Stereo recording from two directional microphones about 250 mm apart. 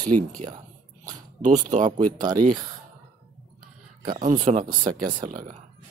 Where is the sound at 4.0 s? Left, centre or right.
Right.